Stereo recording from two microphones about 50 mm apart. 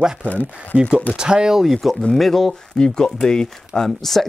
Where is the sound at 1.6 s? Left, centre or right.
Centre.